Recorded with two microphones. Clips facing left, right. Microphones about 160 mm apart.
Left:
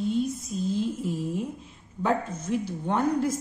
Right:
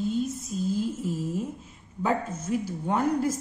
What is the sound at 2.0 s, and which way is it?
A woman's voice, 5° right (ahead or behind).